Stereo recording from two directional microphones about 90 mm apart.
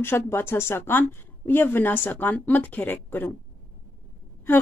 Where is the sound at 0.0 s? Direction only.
25° left (ahead or behind).